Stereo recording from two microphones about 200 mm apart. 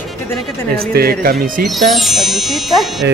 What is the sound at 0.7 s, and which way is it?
Speech, 50° right (ahead or behind).